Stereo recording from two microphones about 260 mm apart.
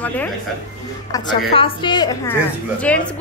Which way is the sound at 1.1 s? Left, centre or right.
Centre.